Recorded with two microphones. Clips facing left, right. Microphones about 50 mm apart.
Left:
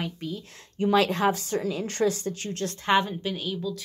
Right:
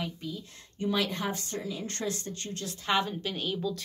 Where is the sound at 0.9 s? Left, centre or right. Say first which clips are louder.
Left 9 dB; left.